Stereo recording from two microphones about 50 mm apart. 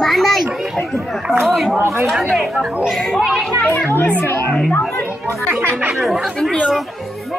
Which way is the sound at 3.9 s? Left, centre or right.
Left.